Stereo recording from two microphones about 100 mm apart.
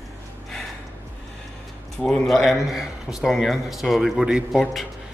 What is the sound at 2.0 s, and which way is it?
Speech, 5° left (ahead or behind).